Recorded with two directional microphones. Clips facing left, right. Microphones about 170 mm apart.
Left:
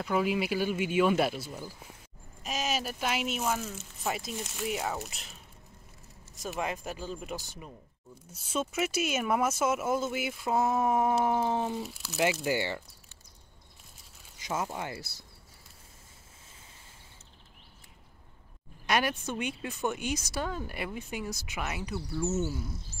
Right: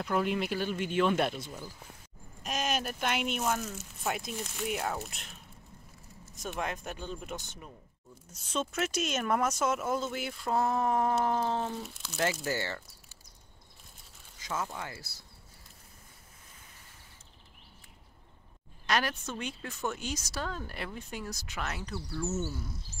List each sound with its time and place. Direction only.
0.0 s speech: 5° left (ahead or behind)
6.4 s speech: 5° left (ahead or behind)
12.4 s speech: 15° left (ahead or behind)
14.4 s speech: 20° left (ahead or behind)
18.9 s speech: 10° left (ahead or behind)
20.0 s speech: 55° left (ahead or behind)
20.3 s speech: 10° left (ahead or behind)